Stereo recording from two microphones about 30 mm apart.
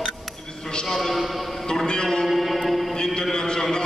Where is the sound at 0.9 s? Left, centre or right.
Centre.